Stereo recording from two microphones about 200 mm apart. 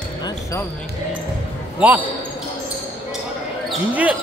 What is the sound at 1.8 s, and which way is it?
Speech, 5° right (ahead or behind).